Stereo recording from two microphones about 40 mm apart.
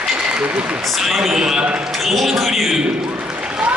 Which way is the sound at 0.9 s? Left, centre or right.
Centre.